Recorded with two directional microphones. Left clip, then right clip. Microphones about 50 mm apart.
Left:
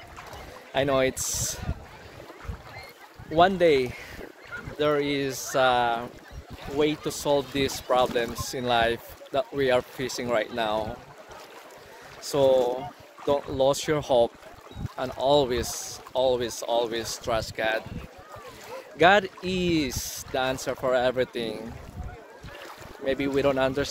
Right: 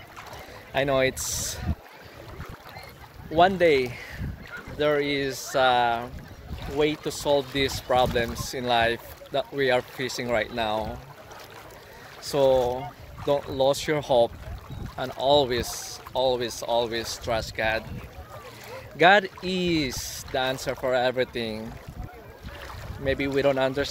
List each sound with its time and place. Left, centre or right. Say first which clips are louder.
0.7 s speech: even; left
1.3 s speech: even; left
3.3 s speech: even; left
4.7 s speech: right 1 dB; left
10.3 s speech: even; left
12.2 s speech: even; left
15.0 s speech: right 1 dB; left
16.1 s speech: even; left
17.0 s speech: even; left
17.6 s speech: right 1 dB; left
23.0 s speech: right 1 dB; left